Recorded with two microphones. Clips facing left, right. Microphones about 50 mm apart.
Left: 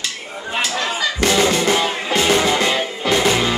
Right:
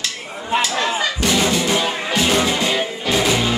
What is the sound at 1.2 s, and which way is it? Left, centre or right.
Music, left.